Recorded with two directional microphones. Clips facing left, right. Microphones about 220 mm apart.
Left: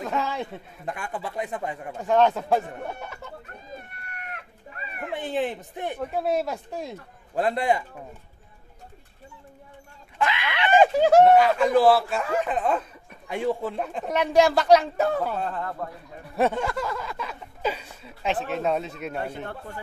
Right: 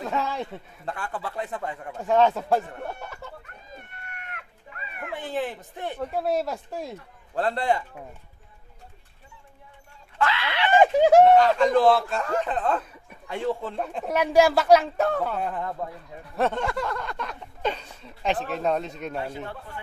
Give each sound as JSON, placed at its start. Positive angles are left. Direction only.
{"t": 0.0, "sound": "speech", "side_deg": 0}
{"t": 0.8, "sound": "speech", "side_deg": 15}
{"t": 2.0, "sound": "a man's voice", "side_deg": 0}
{"t": 5.1, "sound": "speech", "side_deg": 20}
{"t": 5.9, "sound": "a man's voice", "side_deg": 0}
{"t": 7.3, "sound": "speech", "side_deg": 15}
{"t": 10.1, "sound": "screaming", "side_deg": 15}
{"t": 10.8, "sound": "speech", "side_deg": -15}
{"t": 11.2, "sound": "a man's voice", "side_deg": 10}
{"t": 15.4, "sound": "speech", "side_deg": -15}
{"t": 16.3, "sound": "a sound", "side_deg": 5}